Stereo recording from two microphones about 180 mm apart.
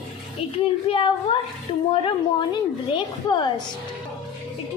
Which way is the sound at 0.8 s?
30° left (ahead or behind).